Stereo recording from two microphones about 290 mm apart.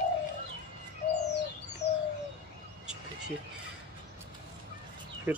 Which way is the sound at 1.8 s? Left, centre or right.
Left.